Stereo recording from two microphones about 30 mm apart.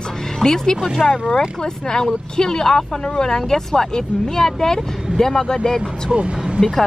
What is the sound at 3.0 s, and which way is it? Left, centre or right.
Speech, left.